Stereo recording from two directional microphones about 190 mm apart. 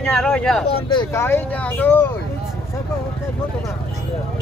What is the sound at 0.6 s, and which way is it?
Speech, 25° left (ahead or behind).